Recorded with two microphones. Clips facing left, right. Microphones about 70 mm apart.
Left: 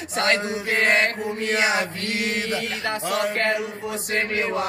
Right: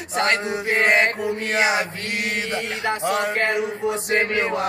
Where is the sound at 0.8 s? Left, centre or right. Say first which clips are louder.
Right 2 dB; right.